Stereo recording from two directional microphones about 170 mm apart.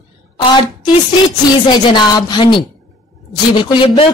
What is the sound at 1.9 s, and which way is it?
A woman's voice, 25° left (ahead or behind).